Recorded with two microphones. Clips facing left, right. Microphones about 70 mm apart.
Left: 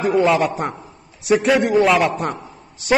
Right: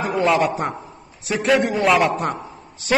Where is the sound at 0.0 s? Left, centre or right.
Centre.